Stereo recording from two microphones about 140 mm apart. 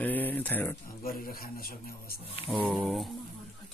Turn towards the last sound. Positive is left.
turn(degrees=0)  # may be behind; listen again after turning